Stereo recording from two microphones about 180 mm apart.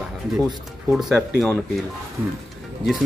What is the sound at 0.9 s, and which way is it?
Speech, 5° right (ahead or behind).